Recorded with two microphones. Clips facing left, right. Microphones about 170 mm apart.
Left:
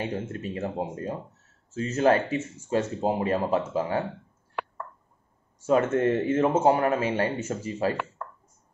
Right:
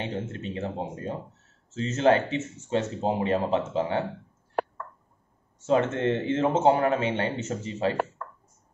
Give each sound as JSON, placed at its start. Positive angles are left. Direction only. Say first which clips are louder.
{"t": 0.0, "sound": "a man's voice", "louder": "left 1 dB", "side_deg": -25}
{"t": 4.6, "sound": "a sound", "louder": "right 6 dB", "side_deg": -40}
{"t": 5.6, "sound": "a man's voice", "louder": "left 2 dB", "side_deg": -25}